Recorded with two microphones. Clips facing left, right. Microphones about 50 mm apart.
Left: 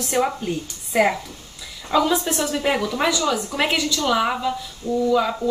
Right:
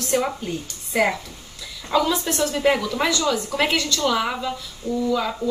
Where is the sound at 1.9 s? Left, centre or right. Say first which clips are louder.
Left 1 dB; centre.